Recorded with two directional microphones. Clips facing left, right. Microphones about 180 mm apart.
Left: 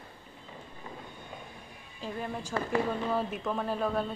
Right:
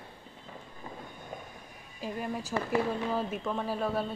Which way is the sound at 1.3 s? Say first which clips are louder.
Right 3 dB; 45° right (ahead or behind).